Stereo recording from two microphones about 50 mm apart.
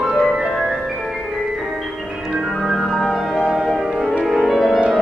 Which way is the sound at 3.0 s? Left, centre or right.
Centre.